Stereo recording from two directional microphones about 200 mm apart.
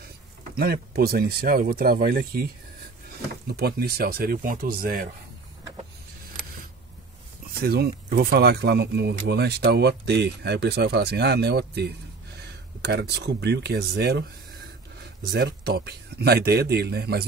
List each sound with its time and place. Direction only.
0.4 s speech: 50° right (ahead or behind)
7.6 s speech: 50° right (ahead or behind)
15.3 s speech: 55° right (ahead or behind)